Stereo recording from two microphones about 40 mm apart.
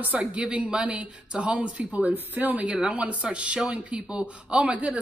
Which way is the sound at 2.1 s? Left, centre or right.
Right.